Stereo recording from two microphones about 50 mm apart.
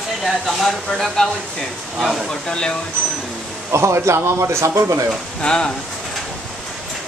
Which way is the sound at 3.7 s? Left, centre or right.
Right.